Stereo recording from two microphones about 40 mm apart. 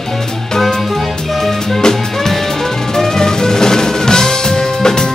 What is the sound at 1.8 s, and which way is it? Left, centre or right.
Music, centre.